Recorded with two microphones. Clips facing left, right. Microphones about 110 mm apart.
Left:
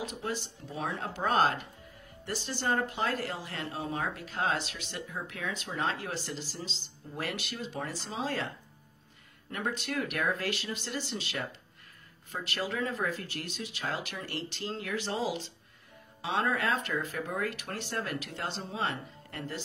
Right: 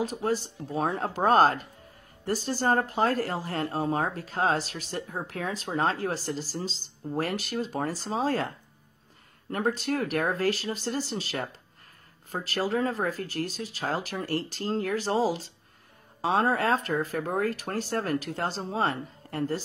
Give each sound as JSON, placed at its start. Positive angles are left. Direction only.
{"t": 0.0, "sound": "speech", "side_deg": -40}
{"t": 9.5, "sound": "speech", "side_deg": -40}